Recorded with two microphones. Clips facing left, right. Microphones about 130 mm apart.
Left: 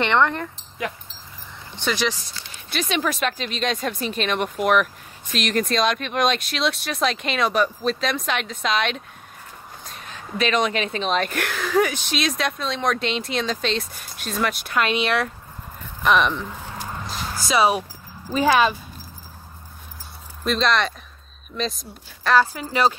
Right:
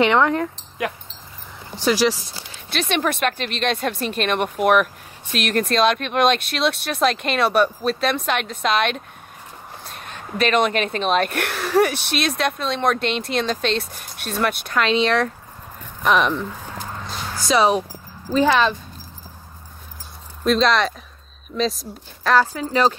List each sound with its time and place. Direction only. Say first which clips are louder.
0.0 s speech: right 3 dB; 5° right (ahead or behind)
1.8 s speech: right 6 dB; 5° right (ahead or behind)
2.7 s speech: right 2 dB; 60° right (ahead or behind)
14.8 s speech: right 3 dB; 10° left (ahead or behind)
16.0 s speech: right 1 dB; centre (ahead or behind)
16.8 s dog: left 1 dB; 10° left (ahead or behind)
18.3 s speech: right 1 dB; 10° left (ahead or behind)
20.4 s speech: right 4 dB; centre (ahead or behind)
22.4 s speech: right 2 dB; 10° left (ahead or behind)